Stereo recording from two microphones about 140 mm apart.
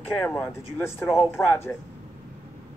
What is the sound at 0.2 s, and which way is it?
Speech, 15° left (ahead or behind).